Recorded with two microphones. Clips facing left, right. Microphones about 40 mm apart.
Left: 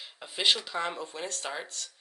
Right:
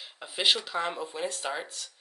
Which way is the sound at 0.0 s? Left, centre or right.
Centre.